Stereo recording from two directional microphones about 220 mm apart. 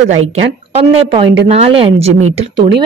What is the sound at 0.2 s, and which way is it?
Speech, 25° right (ahead or behind).